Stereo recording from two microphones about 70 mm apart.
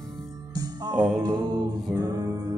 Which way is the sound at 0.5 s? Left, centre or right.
Right.